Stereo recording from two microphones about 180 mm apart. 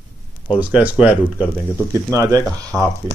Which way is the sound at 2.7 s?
Centre (ahead or behind).